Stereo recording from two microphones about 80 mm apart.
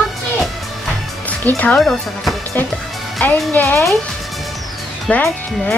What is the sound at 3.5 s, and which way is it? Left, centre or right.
Speech, left.